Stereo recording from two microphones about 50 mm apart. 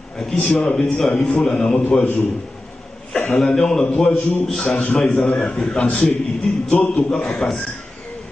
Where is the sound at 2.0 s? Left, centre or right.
Left.